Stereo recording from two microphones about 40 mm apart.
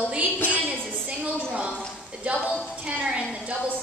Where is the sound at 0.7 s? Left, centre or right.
Right.